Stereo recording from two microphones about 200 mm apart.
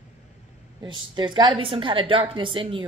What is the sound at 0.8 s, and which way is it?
A woman's voice, 20° right (ahead or behind).